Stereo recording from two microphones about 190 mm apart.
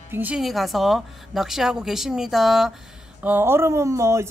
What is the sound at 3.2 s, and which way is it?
Speech, 10° right (ahead or behind).